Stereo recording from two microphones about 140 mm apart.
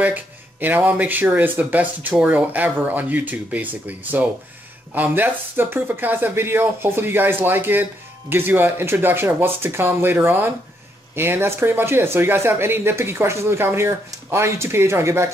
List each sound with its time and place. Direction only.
0.0 s speech: 15° right (ahead or behind)